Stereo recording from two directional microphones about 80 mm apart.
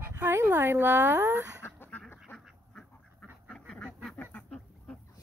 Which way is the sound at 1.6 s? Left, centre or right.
Left.